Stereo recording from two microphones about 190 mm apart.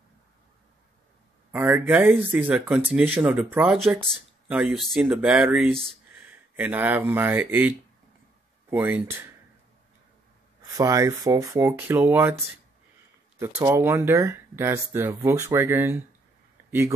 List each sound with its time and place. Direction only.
1.5 s speech: 10° right (ahead or behind)
10.8 s speech: 15° right (ahead or behind)
13.6 s speech: 15° right (ahead or behind)